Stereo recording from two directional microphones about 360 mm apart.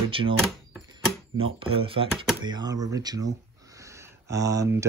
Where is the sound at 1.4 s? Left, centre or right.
Centre.